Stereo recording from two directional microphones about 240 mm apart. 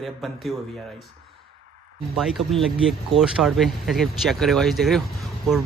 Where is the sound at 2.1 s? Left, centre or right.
Centre.